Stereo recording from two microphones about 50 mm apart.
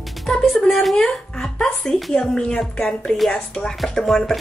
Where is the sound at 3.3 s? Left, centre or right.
Centre.